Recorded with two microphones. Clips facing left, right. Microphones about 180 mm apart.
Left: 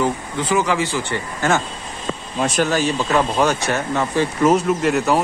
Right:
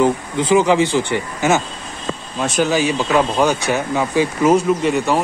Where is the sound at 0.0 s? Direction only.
20° right (ahead or behind).